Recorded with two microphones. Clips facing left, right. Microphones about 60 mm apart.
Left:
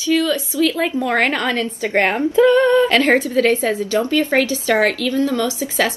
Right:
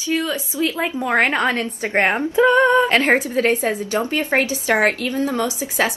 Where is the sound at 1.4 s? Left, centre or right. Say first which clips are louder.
Even; right.